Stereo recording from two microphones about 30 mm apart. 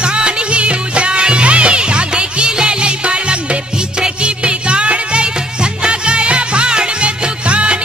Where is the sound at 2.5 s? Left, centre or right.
Right.